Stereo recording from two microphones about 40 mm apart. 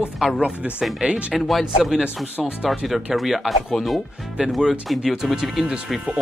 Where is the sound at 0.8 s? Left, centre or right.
Right.